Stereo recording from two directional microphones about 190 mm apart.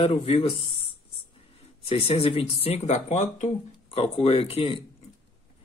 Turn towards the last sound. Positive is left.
turn(degrees=30)  # may be behind; listen again after turning